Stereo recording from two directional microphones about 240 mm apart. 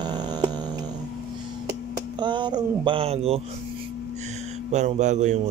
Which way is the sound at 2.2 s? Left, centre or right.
Centre.